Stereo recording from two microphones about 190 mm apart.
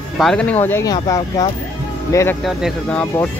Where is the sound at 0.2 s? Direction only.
5° left (ahead or behind).